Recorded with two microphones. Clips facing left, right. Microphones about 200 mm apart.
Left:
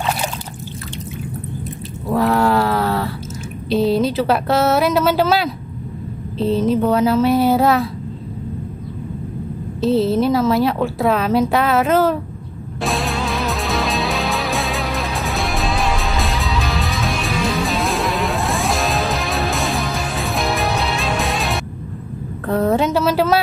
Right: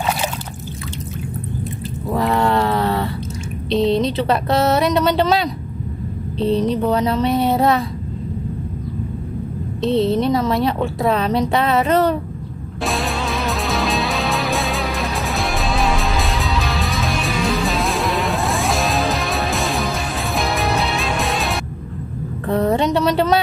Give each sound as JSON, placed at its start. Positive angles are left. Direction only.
{"t": 2.0, "sound": "a sound", "side_deg": 0}
{"t": 3.7, "sound": "a woman's voice", "side_deg": 0}
{"t": 9.8, "sound": "a woman's voice", "side_deg": 0}
{"t": 12.8, "sound": "music", "side_deg": 0}
{"t": 22.5, "sound": "a woman's voice", "side_deg": 0}